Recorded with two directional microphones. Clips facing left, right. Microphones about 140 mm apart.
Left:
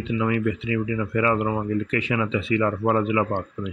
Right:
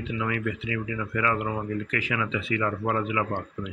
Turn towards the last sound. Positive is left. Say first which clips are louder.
# left 5 dB
turn(degrees=25)  # may be behind; listen again after turning